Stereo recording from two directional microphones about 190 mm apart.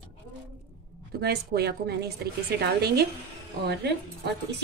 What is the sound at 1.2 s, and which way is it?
A woman's voice, 55° right (ahead or behind).